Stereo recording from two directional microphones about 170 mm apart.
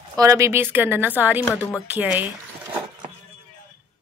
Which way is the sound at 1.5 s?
5° left (ahead or behind).